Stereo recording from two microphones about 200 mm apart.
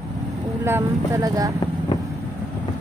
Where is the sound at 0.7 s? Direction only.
15° right (ahead or behind).